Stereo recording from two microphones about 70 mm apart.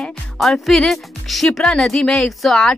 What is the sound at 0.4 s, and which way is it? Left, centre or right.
Speech, centre.